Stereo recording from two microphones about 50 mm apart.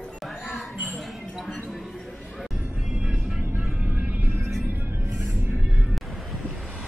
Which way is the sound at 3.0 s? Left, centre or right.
Centre.